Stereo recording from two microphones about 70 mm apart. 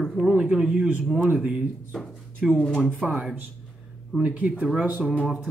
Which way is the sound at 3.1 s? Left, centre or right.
Centre.